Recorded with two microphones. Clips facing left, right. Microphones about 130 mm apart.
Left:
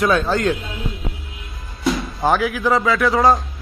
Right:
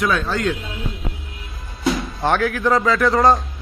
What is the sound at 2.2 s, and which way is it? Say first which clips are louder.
Speech: left 1 dB; 5° left (ahead or behind).